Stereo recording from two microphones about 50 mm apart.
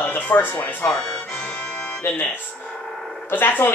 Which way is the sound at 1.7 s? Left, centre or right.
Left.